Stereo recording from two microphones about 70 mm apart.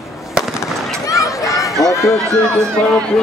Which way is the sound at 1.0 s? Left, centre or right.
Left.